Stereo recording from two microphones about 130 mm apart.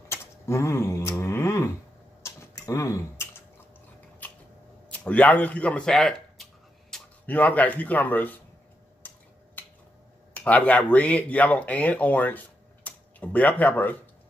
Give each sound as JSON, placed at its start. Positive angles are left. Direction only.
{"t": 0.1, "sound": "a sound", "side_deg": 20}
{"t": 2.2, "sound": "rodents", "side_deg": 20}
{"t": 4.2, "sound": "a sound", "side_deg": 10}
{"t": 7.2, "sound": "speech", "side_deg": 10}
{"t": 9.0, "sound": "finger snapping", "side_deg": 15}
{"t": 10.3, "sound": "speech", "side_deg": 10}